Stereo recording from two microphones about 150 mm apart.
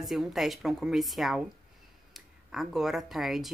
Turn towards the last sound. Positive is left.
turn(degrees=0)  # may be behind; listen again after turning